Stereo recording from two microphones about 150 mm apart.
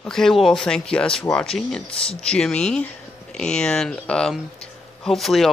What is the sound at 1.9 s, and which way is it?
Speech, 40° left (ahead or behind).